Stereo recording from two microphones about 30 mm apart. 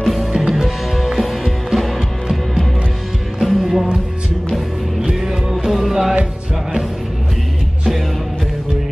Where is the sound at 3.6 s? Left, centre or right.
Centre.